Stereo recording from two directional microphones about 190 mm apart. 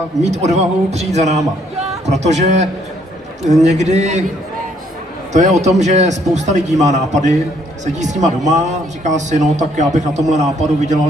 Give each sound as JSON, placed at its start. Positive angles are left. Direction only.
{"t": 0.2, "sound": "a man's voice", "side_deg": -35}
{"t": 5.3, "sound": "a man's voice", "side_deg": -35}